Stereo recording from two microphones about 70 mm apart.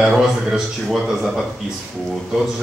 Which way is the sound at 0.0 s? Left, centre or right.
Centre.